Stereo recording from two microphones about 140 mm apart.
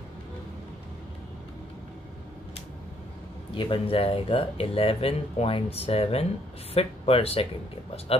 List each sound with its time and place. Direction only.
3.5 s speech: 40° left (ahead or behind)